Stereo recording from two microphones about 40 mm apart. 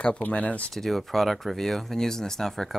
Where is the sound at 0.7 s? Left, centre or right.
Centre.